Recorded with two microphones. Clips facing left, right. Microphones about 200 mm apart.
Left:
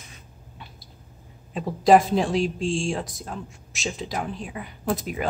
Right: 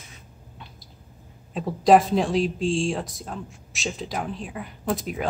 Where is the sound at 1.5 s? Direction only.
Centre (ahead or behind).